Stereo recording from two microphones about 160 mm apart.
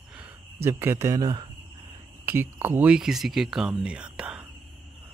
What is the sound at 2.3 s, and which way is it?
Speech, 15° right (ahead or behind).